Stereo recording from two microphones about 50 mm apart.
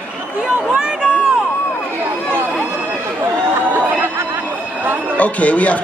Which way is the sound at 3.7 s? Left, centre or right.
Right.